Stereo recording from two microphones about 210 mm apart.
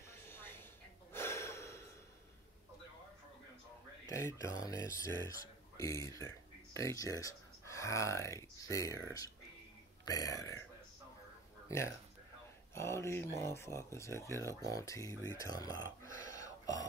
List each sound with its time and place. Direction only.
0.3 s a sound: 10° left (ahead or behind)
1.1 s gasp: 10° left (ahead or behind)
4.1 s speech: 10° left (ahead or behind)
12.7 s speech: 15° left (ahead or behind)